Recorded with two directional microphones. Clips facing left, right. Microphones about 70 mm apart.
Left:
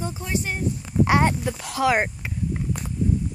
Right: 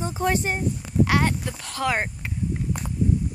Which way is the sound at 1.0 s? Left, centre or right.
Left.